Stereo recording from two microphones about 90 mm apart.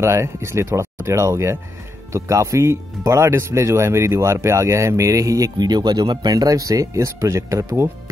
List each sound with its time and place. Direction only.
0.0 s speech: 30° right (ahead or behind)